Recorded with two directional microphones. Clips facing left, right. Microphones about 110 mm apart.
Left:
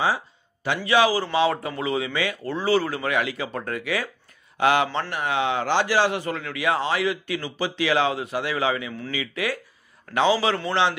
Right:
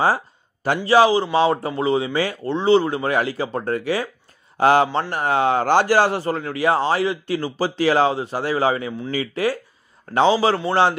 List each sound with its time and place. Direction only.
0.8 s a man's voice: 30° right (ahead or behind)